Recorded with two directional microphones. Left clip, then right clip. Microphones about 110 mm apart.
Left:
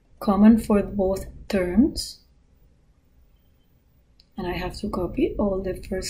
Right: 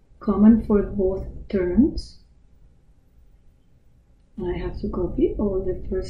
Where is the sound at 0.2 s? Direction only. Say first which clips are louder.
Even; 20° left (ahead or behind).